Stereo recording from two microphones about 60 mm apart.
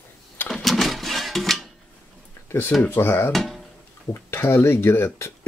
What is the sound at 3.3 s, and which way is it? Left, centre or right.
Speech, centre.